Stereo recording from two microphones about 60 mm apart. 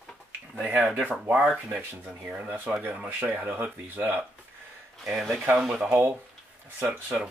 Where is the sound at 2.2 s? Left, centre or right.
Right.